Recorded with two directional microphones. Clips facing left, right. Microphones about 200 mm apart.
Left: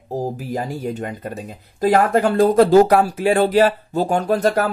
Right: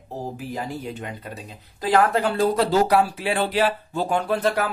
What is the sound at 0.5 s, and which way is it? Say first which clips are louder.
Speech: left 6 dB; 45° left (ahead or behind).